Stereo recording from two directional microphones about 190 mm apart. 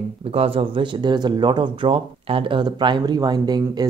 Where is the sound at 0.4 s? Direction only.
30° right (ahead or behind).